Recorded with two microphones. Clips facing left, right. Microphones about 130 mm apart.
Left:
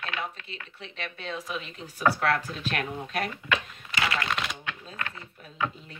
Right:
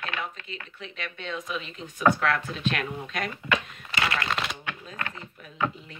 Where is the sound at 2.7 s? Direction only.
40° left (ahead or behind).